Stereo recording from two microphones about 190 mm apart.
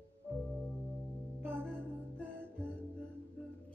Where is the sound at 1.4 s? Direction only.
10° right (ahead or behind).